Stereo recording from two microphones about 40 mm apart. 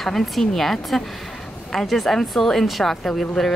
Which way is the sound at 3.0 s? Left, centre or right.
Centre.